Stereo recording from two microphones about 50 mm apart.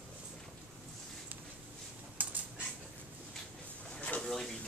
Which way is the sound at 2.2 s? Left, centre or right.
Right.